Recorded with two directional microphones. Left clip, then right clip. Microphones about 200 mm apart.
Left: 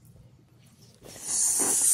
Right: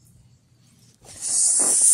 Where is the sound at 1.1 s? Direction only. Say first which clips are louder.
Right 5 dB; 15° left (ahead or behind).